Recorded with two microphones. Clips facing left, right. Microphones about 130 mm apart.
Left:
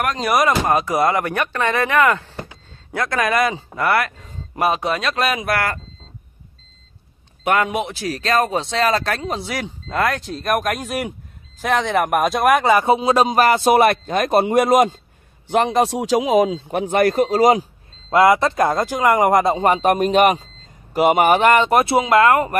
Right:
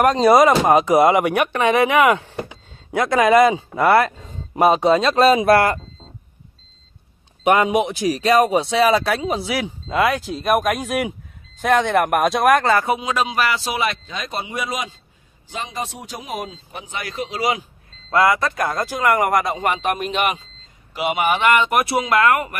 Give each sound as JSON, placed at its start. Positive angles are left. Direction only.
{"t": 0.0, "sound": "speech", "side_deg": -30}
{"t": 7.4, "sound": "a man's voice", "side_deg": -15}
{"t": 12.6, "sound": "speech", "side_deg": 15}
{"t": 12.9, "sound": "a man's voice", "side_deg": 35}
{"t": 18.1, "sound": "speech", "side_deg": 25}